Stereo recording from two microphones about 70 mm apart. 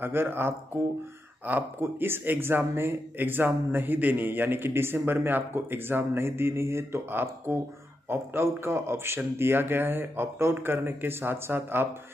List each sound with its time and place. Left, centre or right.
0.0 s a man's voice: right
1.8 s a man's voice: right